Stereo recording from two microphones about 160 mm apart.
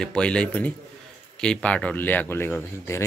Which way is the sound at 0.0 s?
5° left (ahead or behind).